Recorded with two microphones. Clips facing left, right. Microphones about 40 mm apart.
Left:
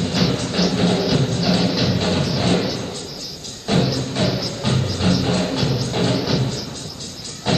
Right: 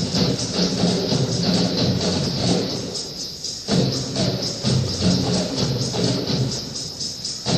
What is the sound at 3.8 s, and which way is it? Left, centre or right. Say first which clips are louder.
Music: left 2 dB; left.